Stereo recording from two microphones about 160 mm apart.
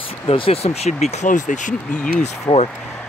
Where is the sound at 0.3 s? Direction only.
40° left (ahead or behind).